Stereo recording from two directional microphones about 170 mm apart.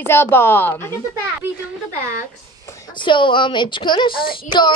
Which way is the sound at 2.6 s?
25° left (ahead or behind).